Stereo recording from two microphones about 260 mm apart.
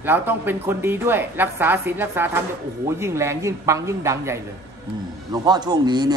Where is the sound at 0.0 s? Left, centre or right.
Centre.